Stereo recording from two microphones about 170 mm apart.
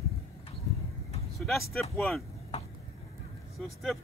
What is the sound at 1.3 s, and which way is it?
Vehicle, centre (ahead or behind).